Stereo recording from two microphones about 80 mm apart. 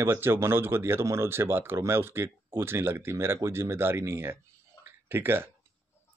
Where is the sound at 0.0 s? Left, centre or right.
Right.